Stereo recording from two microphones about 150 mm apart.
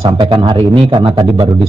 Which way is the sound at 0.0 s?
30° right (ahead or behind).